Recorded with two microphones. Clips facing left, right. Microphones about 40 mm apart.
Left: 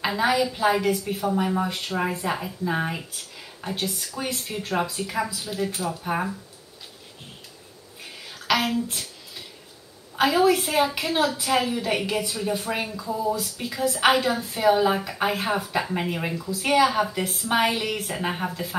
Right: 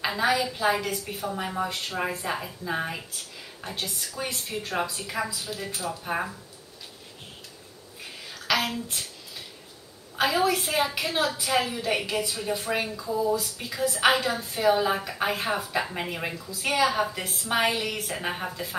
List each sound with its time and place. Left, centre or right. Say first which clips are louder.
0.0 s a woman's voice: left 2 dB; centre
1.7 s speech: left 3 dB; centre
4.0 s a woman's voice: left 2 dB; centre
5.7 s speech: left 3 dB; centre
6.0 s a woman's voice: left 2 dB; centre
8.0 s throat clearing: even; centre
10.1 s a woman's voice: left 4 dB; centre
17.2 s speech: left 4 dB; centre
17.6 s a woman's voice: left 2 dB; centre